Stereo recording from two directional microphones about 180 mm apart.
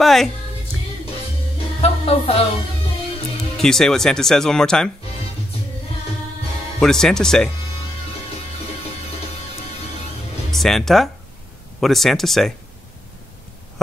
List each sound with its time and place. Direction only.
0.0 s speech: centre (ahead or behind)
1.8 s music: 35° left (ahead or behind)
3.5 s speech: centre (ahead or behind)
6.8 s speech: 5° left (ahead or behind)
10.5 s speech: centre (ahead or behind)